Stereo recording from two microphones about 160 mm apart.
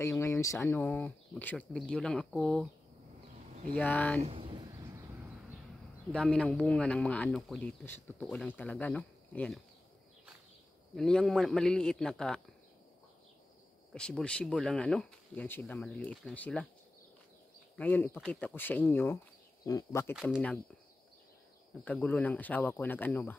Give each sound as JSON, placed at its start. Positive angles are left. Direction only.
{"t": 0.0, "sound": "speech", "side_deg": 15}
{"t": 3.7, "sound": "speech", "side_deg": 5}
{"t": 4.2, "sound": "a sound", "side_deg": -35}
{"t": 6.1, "sound": "speech", "side_deg": 5}
{"t": 11.0, "sound": "speech", "side_deg": 5}
{"t": 13.9, "sound": "speech", "side_deg": 5}
{"t": 17.7, "sound": "speech", "side_deg": 10}
{"t": 21.8, "sound": "speech", "side_deg": 10}